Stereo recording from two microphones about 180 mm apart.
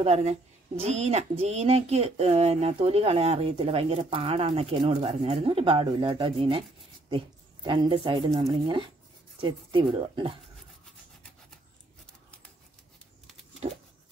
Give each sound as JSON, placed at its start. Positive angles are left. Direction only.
{"t": 0.0, "sound": "speech", "side_deg": -35}